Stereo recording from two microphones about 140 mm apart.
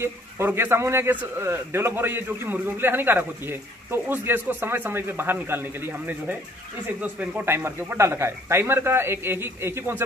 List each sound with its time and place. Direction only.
0.0 s a man's voice: 15° right (ahead or behind)